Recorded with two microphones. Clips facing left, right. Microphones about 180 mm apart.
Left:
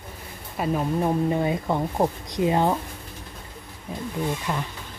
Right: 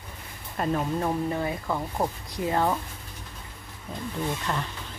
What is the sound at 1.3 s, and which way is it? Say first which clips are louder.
Speech: left 5 dB; 20° left (ahead or behind).